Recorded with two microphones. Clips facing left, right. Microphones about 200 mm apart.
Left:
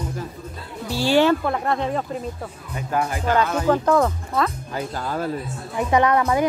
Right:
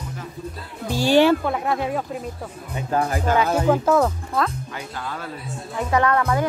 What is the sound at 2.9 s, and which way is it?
Speech, 35° right (ahead or behind).